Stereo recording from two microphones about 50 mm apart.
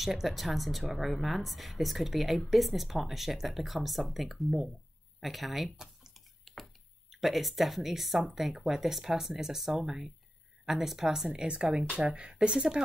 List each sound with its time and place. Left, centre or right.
0.0 s speech: centre
6.4 s a sound: centre
8.4 s speech: centre
11.4 s speech: centre